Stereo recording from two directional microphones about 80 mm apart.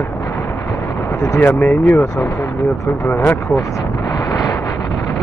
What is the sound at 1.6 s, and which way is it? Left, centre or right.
Speech, left.